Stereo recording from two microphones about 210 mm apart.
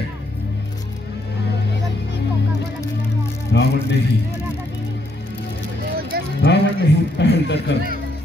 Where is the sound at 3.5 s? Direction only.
55° left (ahead or behind).